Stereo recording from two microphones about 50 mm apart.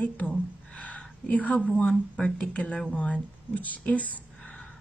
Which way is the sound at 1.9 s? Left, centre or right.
Centre.